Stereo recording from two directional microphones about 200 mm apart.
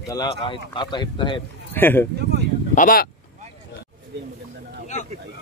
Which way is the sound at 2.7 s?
45° left (ahead or behind).